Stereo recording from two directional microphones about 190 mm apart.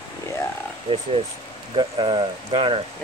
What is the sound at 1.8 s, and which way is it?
Speech, 25° right (ahead or behind).